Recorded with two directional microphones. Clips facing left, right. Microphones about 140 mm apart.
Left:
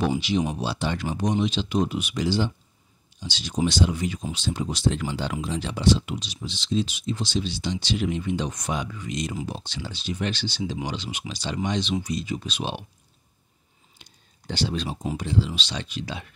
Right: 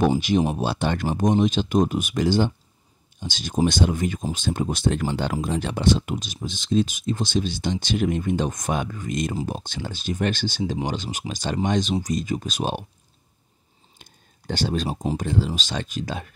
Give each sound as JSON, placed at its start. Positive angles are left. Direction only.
{"t": 0.5, "sound": "speech", "side_deg": -55}
{"t": 14.0, "sound": "a sound", "side_deg": -50}
{"t": 14.5, "sound": "speech", "side_deg": -45}